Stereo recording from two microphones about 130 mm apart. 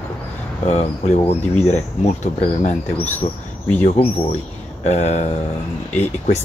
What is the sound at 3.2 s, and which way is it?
Speech, 45° left (ahead or behind).